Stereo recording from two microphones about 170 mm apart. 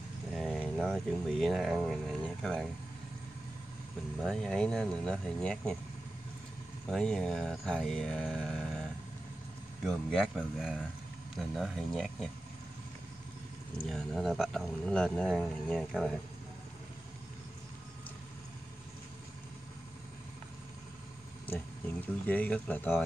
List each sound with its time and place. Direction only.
0.4 s speech: 5° left (ahead or behind)
4.2 s speech: centre (ahead or behind)
6.9 s speech: centre (ahead or behind)
9.8 s speech: 5° left (ahead or behind)
13.8 s speech: centre (ahead or behind)
21.5 s speech: 10° left (ahead or behind)